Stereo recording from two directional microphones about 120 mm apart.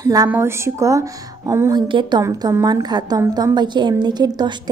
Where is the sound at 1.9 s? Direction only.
40° right (ahead or behind).